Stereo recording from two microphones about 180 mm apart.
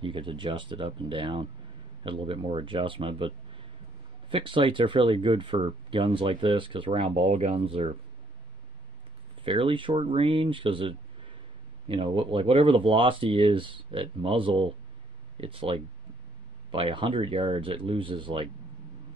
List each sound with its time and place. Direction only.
0.0 s speech: 30° right (ahead or behind)
9.4 s speech: 30° right (ahead or behind)